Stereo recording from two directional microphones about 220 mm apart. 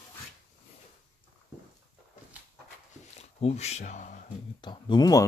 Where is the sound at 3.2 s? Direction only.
30° left (ahead or behind).